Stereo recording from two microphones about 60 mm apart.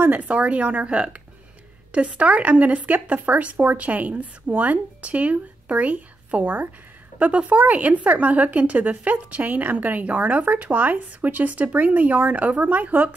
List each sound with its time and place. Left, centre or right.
0.0 s a woman's voice: right